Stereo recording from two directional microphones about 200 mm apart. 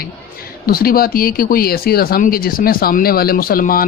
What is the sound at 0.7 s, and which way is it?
Speech, 50° left (ahead or behind).